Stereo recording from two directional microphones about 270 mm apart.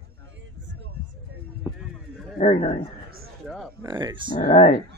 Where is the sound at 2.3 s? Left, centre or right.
Left.